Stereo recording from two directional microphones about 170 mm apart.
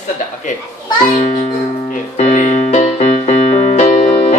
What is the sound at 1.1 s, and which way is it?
Music, 45° left (ahead or behind).